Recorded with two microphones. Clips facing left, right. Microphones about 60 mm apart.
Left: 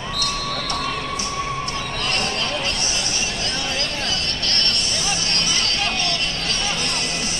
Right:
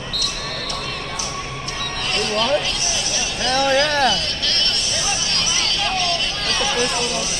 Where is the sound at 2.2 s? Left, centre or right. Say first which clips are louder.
Right 5 dB; right.